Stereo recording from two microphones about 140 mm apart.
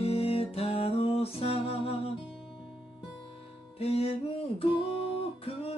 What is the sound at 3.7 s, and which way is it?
Music, 45° left (ahead or behind).